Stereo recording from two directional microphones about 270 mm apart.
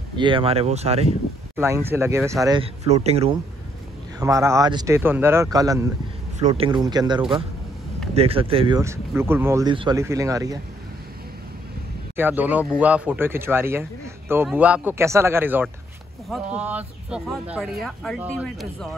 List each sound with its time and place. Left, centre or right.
0.2 s a man's voice: centre
1.6 s a man's voice: centre
4.2 s speech: centre
12.2 s speech: centre